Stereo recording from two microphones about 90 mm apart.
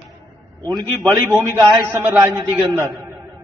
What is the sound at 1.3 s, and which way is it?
A man's voice, 40° right (ahead or behind).